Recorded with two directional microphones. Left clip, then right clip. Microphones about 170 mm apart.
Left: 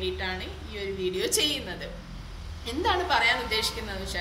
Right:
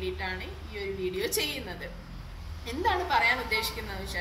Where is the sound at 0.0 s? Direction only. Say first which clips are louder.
Left 3 dB; 15° left (ahead or behind).